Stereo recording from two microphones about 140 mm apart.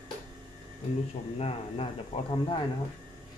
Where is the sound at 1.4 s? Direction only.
45° left (ahead or behind).